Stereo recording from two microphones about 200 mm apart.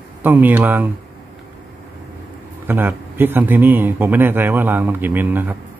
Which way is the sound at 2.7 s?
10° right (ahead or behind).